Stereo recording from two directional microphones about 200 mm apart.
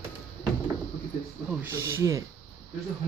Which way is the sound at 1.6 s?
15° right (ahead or behind).